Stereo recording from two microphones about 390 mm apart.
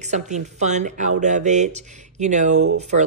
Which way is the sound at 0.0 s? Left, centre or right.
Centre.